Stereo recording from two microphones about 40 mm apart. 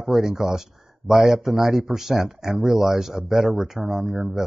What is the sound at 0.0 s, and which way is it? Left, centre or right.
A man's voice, centre.